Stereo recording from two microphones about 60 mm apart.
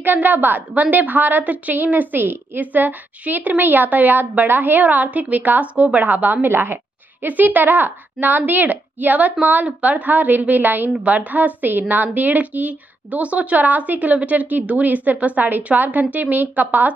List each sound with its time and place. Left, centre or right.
0.0 s a woman's voice: right